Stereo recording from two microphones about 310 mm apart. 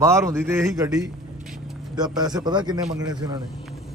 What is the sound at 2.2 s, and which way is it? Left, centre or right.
Speech, centre.